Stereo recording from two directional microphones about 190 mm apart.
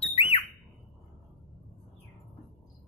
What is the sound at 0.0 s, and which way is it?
Alarm, 30° left (ahead or behind).